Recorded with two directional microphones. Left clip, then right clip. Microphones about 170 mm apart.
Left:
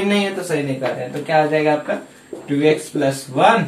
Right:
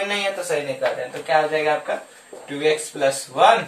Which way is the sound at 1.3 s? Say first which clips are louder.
Left 3 dB; 5° right (ahead or behind).